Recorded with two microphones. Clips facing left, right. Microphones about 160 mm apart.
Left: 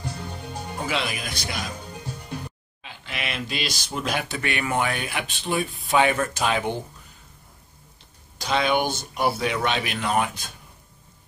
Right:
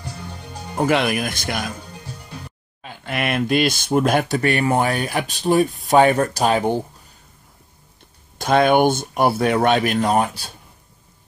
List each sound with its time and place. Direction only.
0.7 s speech: 55° right (ahead or behind)
2.8 s speech: 50° right (ahead or behind)
8.4 s speech: 50° right (ahead or behind); by 10.5 s 35° right (ahead or behind)